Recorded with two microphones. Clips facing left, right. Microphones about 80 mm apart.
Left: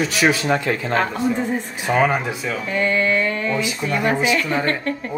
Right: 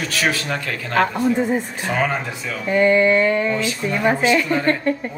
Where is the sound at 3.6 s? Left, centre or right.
Centre.